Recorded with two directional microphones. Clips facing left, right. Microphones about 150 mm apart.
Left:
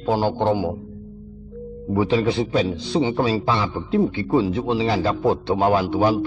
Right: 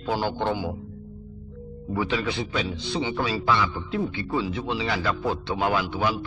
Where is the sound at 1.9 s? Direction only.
35° left (ahead or behind).